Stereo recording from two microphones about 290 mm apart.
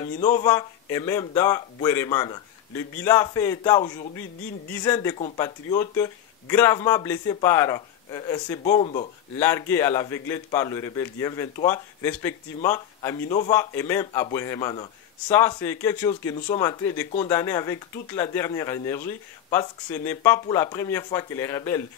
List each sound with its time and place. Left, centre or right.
0.0 s a man's voice: centre
9.4 s a man's voice: centre